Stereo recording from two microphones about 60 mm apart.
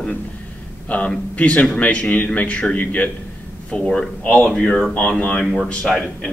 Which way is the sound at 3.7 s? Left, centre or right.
Centre.